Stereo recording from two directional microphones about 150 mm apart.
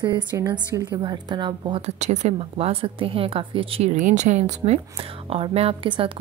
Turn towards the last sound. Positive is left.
turn(degrees=-35)  # may be behind; listen again after turning